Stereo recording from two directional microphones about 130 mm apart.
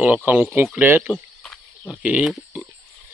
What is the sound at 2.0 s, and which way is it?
Speech, 10° right (ahead or behind).